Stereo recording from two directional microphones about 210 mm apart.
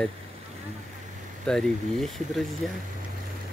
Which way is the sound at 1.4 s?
5° left (ahead or behind).